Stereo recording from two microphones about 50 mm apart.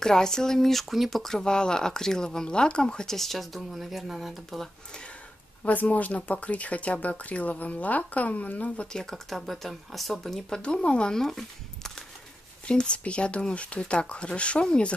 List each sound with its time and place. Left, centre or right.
0.0 s speech: centre
5.6 s speech: left
8.9 s speech: centre
10.6 s speech: left
12.6 s speech: left